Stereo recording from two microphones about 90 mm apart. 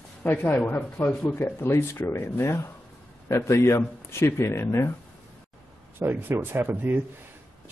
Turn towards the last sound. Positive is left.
turn(degrees=-20)  # may be behind; listen again after turning